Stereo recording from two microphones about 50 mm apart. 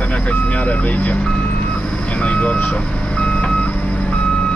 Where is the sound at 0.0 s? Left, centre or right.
Left.